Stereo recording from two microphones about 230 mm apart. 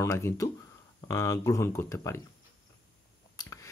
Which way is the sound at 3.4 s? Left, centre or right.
Centre.